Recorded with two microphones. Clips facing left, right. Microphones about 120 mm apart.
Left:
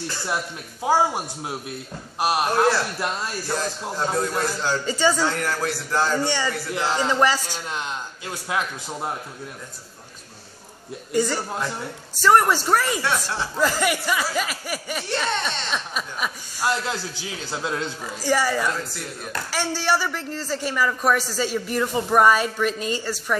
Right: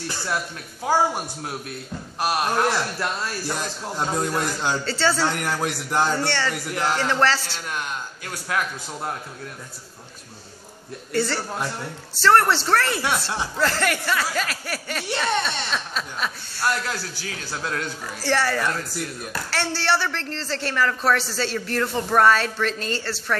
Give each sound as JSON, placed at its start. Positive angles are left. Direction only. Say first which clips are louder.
{"t": 0.8, "sound": "speech", "louder": "left 1 dB", "side_deg": 20}
{"t": 3.9, "sound": "a man's voice", "louder": "even", "side_deg": -15}
{"t": 4.8, "sound": "speech", "louder": "left 2 dB", "side_deg": 15}
{"t": 5.3, "sound": "a man's voice", "louder": "even", "side_deg": -15}
{"t": 6.1, "sound": "speech", "louder": "left 1 dB", "side_deg": 15}
{"t": 11.1, "sound": "speech", "louder": "left 1 dB", "side_deg": 15}
{"t": 13.0, "sound": "a man's voice", "louder": "even", "side_deg": -15}
{"t": 13.6, "sound": "a man's voice", "louder": "left 2 dB", "side_deg": 10}